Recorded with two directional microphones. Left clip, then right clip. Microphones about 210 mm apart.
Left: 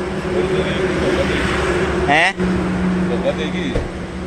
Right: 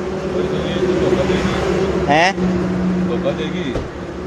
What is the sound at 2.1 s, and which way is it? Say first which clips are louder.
Speech: even; 10° right (ahead or behind).